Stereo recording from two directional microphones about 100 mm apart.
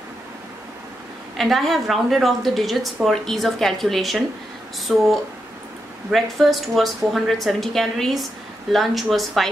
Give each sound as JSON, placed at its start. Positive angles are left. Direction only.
{"t": 1.3, "sound": "a woman's voice", "side_deg": 0}